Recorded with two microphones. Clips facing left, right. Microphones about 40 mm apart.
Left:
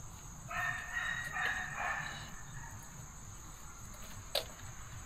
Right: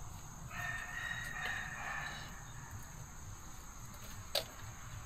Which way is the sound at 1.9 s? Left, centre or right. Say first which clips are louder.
Left 2 dB; centre.